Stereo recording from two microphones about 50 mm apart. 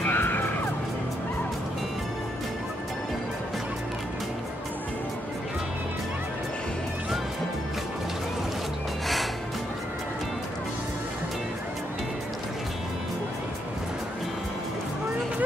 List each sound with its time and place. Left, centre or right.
0.0 s music: left
9.0 s music: centre